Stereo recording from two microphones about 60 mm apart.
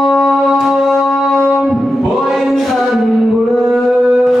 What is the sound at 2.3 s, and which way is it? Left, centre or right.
Chant, centre.